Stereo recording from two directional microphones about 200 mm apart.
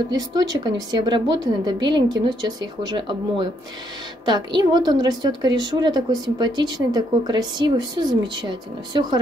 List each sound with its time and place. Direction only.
0.1 s a woman's voice: 20° right (ahead or behind)